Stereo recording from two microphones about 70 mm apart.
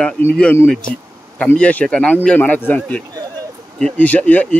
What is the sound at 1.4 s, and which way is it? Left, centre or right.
Speech, centre.